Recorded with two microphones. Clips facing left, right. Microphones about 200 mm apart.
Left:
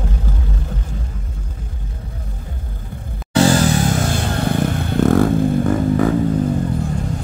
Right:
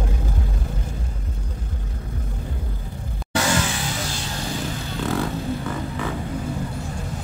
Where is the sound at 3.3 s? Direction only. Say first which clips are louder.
Left 9 dB; 35° left (ahead or behind).